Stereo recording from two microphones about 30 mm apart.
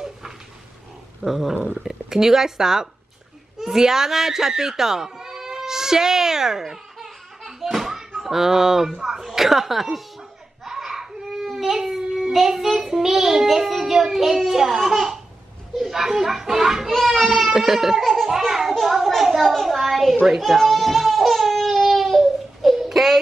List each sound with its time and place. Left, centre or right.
1.2 s a child's voice: centre
3.5 s a sound: centre
8.2 s a child's voice: centre
10.6 s baby cry: centre
12.1 s child singing: centre
12.8 s a child's voice: centre
16.9 s a child's voice: centre
17.5 s a child's voice: centre
18.5 s a sound: centre
19.5 s speech: centre
20.2 s baby cry: centre